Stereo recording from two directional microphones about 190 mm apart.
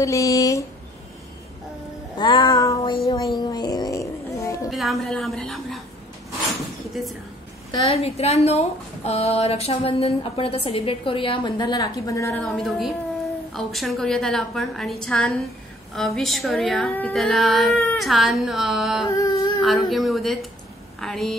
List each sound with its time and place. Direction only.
0.0 s speech: 15° left (ahead or behind)
2.1 s child singing: 25° left (ahead or behind)
3.3 s a sound: 20° left (ahead or behind)
4.6 s a woman's voice: centre (ahead or behind)
6.9 s a woman's voice: centre (ahead or behind)
7.7 s speech: 30° left (ahead or behind); by 12.4 s 15° left (ahead or behind)
12.4 s speech: centre (ahead or behind)
19.0 s speech: 15° left (ahead or behind)
19.6 s speech: centre (ahead or behind)